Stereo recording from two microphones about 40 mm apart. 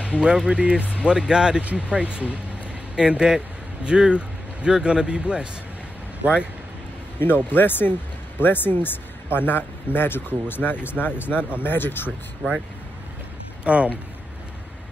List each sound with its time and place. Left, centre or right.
0.2 s speech: right
1.6 s speech: right
7.2 s speech: left
13.7 s speech: right